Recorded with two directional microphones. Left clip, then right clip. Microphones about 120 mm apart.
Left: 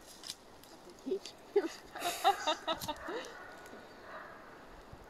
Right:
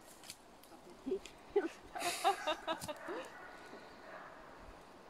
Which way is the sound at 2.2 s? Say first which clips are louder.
Left 5 dB; 5° left (ahead or behind).